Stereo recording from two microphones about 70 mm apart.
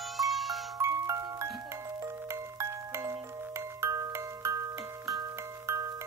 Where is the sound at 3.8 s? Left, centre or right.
Right.